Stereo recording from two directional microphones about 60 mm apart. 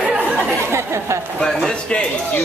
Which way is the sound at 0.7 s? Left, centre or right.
Right.